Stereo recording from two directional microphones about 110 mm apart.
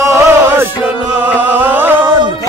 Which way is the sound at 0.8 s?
15° right (ahead or behind).